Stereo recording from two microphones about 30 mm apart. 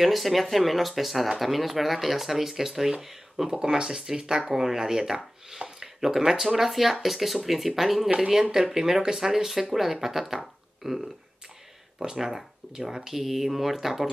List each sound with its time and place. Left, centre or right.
0.0 s speech: centre
3.4 s speech: right
5.8 s a sound: centre
6.4 s speech: centre
8.2 s speech: centre